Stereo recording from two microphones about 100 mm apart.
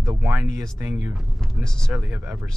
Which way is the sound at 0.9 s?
5° right (ahead or behind).